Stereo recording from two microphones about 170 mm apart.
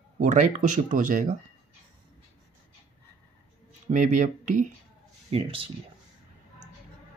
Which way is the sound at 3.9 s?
50° right (ahead or behind).